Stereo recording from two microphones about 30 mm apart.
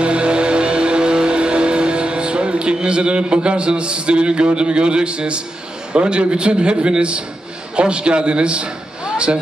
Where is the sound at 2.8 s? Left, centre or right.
Right.